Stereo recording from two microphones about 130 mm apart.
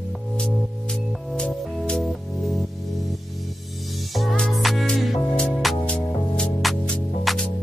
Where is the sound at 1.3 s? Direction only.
5° left (ahead or behind).